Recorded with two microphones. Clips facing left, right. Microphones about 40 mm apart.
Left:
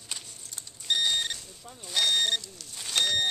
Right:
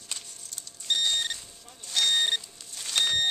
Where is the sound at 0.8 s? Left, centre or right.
Centre.